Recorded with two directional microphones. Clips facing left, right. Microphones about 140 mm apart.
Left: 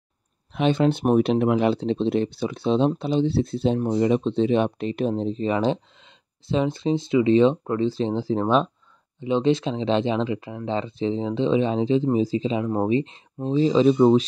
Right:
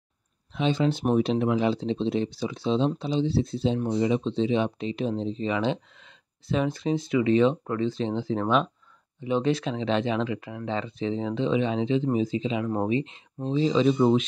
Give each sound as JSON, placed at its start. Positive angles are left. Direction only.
{"t": 0.5, "sound": "speech", "side_deg": 60}
{"t": 6.5, "sound": "speech", "side_deg": 25}